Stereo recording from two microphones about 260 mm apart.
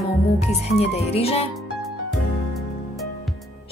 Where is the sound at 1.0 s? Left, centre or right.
Left.